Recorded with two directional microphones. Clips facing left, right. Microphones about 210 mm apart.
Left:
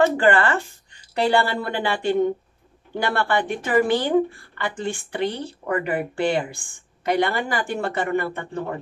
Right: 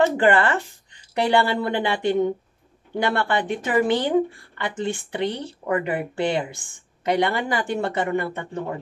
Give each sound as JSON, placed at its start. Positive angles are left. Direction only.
{"t": 0.2, "sound": "speech", "side_deg": -20}